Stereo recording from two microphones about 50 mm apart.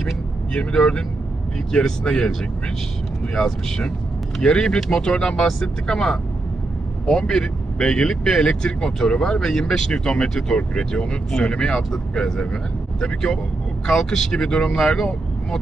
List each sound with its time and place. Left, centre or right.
0.5 s speech: left
3.3 s speech: centre